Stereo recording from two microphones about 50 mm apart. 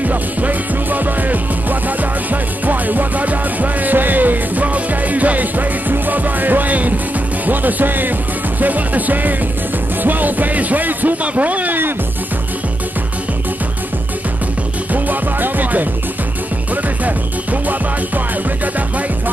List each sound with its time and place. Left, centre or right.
0.0 s music: right
7.4 s speech: right
14.9 s music: right
17.0 s music: right